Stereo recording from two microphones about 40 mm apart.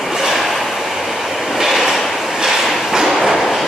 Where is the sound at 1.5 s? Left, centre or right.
Centre.